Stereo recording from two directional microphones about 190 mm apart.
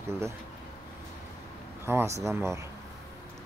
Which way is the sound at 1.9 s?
15° right (ahead or behind).